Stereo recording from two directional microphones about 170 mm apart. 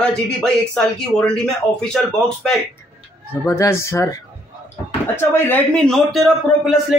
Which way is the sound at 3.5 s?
15° left (ahead or behind).